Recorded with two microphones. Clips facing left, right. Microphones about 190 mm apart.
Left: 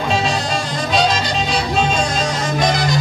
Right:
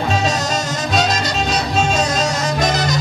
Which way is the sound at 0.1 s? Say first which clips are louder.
Left 1 dB; 45° right (ahead or behind).